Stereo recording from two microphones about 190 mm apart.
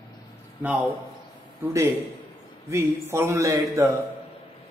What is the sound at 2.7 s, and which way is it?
Speech, 15° right (ahead or behind).